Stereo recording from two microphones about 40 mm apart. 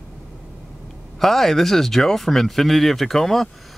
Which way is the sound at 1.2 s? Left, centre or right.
Centre.